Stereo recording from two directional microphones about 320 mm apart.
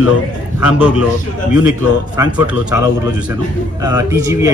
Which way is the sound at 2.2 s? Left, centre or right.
Centre.